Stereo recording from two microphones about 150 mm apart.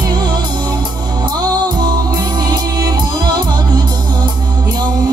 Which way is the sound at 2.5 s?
25° right (ahead or behind).